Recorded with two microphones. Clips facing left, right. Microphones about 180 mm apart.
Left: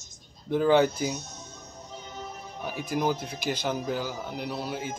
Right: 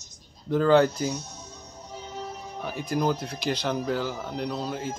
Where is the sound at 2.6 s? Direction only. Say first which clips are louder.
Right 2 dB; 5° left (ahead or behind).